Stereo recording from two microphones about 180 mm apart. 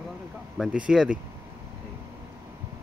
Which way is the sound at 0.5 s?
5° right (ahead or behind).